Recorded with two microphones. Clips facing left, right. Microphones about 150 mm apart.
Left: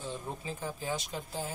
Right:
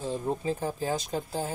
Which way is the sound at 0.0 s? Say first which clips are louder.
Right 9 dB; 40° right (ahead or behind).